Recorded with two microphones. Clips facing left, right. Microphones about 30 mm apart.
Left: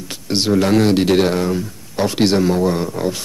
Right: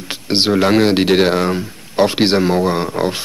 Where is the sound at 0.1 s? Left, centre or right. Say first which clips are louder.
Right 2 dB; right.